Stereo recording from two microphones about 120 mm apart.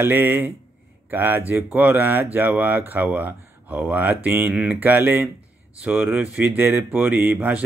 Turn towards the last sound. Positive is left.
turn(degrees=-10)  # may be behind; listen again after turning